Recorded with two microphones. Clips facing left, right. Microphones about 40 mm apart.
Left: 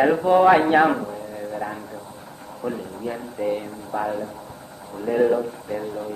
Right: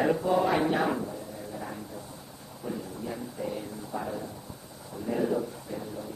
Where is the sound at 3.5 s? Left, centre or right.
Left.